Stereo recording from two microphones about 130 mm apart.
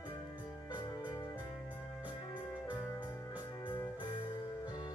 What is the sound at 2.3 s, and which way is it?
Music, 10° right (ahead or behind).